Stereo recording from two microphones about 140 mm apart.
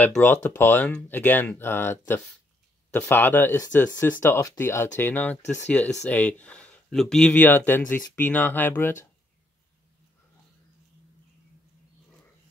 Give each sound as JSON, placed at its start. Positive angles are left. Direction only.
{"t": 0.0, "sound": "speech", "side_deg": 15}